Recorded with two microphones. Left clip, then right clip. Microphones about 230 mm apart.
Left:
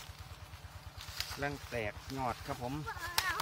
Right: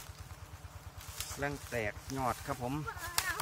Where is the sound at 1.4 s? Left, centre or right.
Centre.